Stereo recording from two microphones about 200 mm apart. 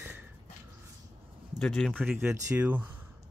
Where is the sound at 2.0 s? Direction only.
10° right (ahead or behind).